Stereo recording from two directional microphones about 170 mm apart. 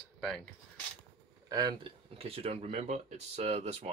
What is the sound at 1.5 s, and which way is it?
Speech, 25° right (ahead or behind).